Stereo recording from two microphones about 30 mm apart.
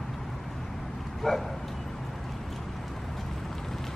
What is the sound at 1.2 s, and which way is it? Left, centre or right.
Speech, centre.